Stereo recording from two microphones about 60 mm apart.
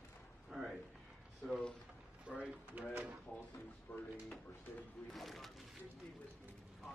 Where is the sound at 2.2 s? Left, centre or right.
Right.